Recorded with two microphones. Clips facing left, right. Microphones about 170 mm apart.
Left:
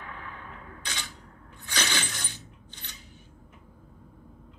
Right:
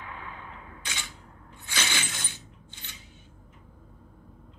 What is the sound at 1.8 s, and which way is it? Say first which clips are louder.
Shatter: left 2 dB; 50° left (ahead or behind).